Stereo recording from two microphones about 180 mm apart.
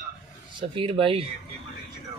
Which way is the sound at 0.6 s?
30° right (ahead or behind).